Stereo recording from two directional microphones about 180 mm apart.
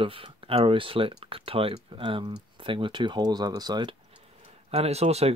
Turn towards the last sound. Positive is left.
turn(degrees=-35)  # may be behind; listen again after turning